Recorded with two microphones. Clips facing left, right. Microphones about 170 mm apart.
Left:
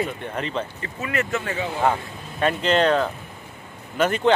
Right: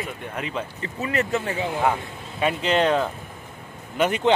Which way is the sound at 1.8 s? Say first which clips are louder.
Left 1 dB; 5° right (ahead or behind).